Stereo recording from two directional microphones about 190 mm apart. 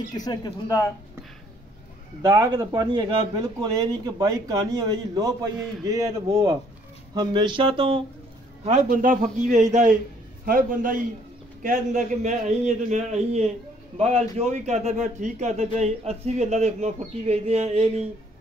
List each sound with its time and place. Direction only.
0.1 s speech: 20° left (ahead or behind)
2.2 s a man's voice: 20° right (ahead or behind)
8.6 s a man's voice: 40° right (ahead or behind)